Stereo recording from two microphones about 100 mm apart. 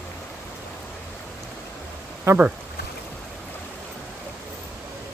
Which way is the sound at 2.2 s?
20° right (ahead or behind).